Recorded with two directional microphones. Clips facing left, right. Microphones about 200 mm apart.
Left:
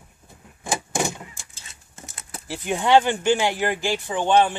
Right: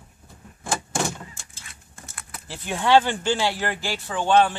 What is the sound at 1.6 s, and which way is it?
Patter, 25° left (ahead or behind).